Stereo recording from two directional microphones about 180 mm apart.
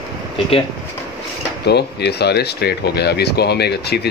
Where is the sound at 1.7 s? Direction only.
65° left (ahead or behind).